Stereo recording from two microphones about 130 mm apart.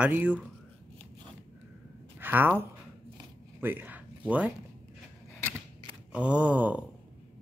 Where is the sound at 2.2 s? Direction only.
15° right (ahead or behind).